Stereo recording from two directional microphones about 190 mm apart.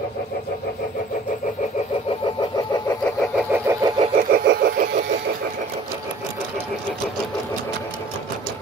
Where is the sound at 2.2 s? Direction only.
25° left (ahead or behind).